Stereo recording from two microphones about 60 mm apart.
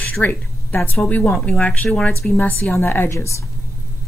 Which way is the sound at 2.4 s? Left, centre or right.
Left.